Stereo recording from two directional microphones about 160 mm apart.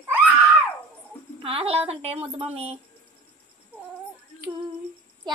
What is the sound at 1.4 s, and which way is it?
Speech, 35° right (ahead or behind).